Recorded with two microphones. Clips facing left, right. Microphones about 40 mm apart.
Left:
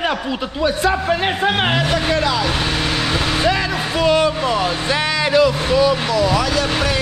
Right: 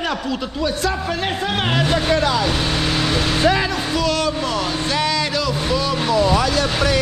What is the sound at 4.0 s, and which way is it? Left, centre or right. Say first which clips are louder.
Speech: left 6 dB; left.